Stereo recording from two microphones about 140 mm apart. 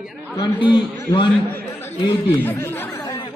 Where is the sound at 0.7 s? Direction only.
35° left (ahead or behind).